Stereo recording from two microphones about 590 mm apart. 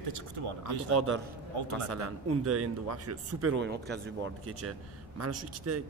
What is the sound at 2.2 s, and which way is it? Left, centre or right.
A man's voice, right.